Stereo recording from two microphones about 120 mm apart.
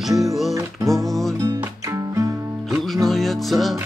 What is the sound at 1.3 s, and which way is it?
Music, 25° right (ahead or behind).